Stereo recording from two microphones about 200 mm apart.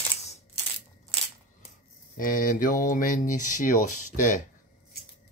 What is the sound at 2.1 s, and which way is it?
Speech, 45° left (ahead or behind).